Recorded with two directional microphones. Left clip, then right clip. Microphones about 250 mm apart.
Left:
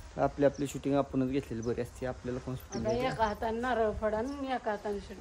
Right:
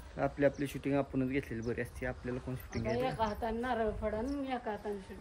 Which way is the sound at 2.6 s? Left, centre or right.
Left.